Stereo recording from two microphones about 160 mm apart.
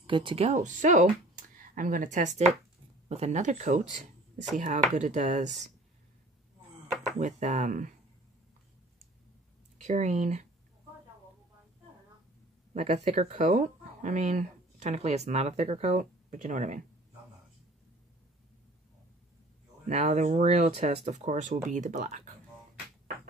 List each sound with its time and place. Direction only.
0.0 s speech: 30° right (ahead or behind)
0.5 s speech: 50° right (ahead or behind)
7.2 s speech: 45° right (ahead or behind)
9.8 s speech: 45° right (ahead or behind)
12.7 s speech: 45° right (ahead or behind)
19.9 s speech: 45° right (ahead or behind)